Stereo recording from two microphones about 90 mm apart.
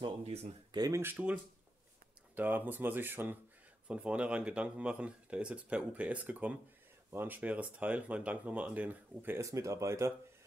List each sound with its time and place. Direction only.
0.0 s speech: 65° right (ahead or behind)
0.7 s speech: 40° right (ahead or behind)
1.0 s speech: 15° right (ahead or behind)
9.4 s speech: 35° right (ahead or behind)